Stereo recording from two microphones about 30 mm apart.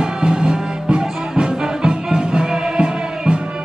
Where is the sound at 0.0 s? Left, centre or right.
Right.